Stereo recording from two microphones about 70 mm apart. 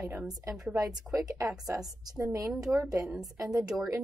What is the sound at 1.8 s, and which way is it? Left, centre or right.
A woman's voice, centre.